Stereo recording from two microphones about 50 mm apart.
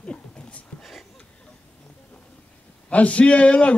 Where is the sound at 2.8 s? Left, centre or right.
Left.